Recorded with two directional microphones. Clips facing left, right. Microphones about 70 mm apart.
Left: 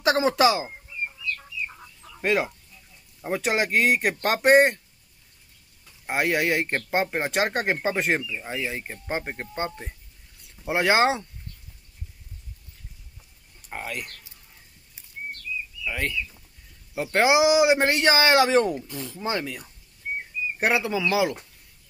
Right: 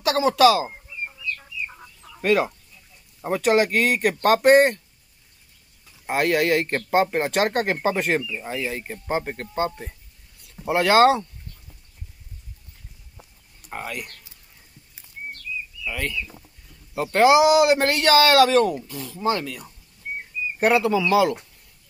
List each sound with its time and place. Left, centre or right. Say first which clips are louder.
0.0 s speech: right 3 dB; left
3.3 s speech: right 5 dB; centre
6.0 s speech: right 3 dB; centre
8.2 s speech: right 2 dB; centre
10.7 s speech: right 5 dB; centre
13.7 s speech: right 1 dB; centre
15.9 s speech: even; centre